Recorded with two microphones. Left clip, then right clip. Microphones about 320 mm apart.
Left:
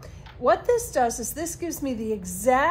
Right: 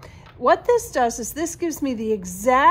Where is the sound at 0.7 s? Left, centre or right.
Right.